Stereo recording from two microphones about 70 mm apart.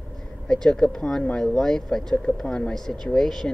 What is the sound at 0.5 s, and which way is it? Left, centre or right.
Speech, centre.